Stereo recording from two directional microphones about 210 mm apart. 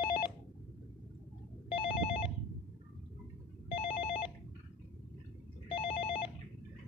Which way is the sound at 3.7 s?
25° left (ahead or behind).